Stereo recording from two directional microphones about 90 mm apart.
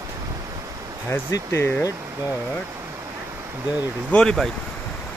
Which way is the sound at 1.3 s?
35° left (ahead or behind).